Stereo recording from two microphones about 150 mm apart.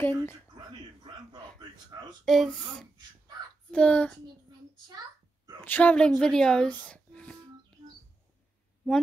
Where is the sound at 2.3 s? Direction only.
5° left (ahead or behind).